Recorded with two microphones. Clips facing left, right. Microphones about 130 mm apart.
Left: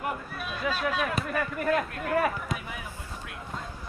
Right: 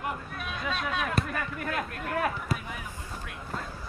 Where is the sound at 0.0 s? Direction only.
Centre (ahead or behind).